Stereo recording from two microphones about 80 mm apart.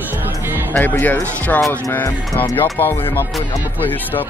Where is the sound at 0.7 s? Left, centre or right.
Left.